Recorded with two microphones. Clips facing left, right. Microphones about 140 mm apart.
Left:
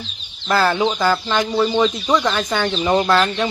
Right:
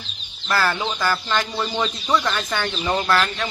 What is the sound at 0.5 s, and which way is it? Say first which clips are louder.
Speech: left 5 dB; 20° left (ahead or behind).